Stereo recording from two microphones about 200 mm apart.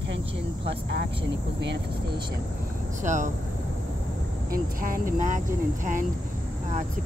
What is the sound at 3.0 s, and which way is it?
Speech, 35° right (ahead or behind).